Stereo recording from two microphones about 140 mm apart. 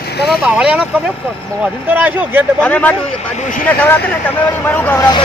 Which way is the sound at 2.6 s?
10° left (ahead or behind).